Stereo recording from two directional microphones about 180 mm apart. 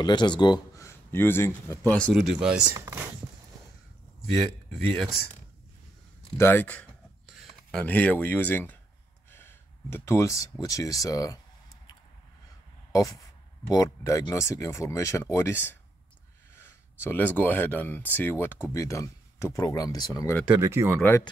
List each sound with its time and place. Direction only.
0.0 s speech: 25° left (ahead or behind); by 2.2 s 5° left (ahead or behind)
2.3 s speech: 5° right (ahead or behind)
4.6 s speech: centre (ahead or behind)
6.3 s speech: 15° left (ahead or behind)
9.3 s a sound: 10° left (ahead or behind)
10.6 s speech: 20° left (ahead or behind)
12.9 s speech: 20° left (ahead or behind)
20.4 s speech: 10° right (ahead or behind)